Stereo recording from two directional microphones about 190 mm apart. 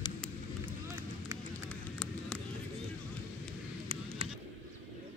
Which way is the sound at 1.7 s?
5° left (ahead or behind).